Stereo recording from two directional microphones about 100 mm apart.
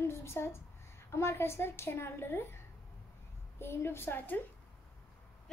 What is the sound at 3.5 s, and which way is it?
Speech, 25° left (ahead or behind).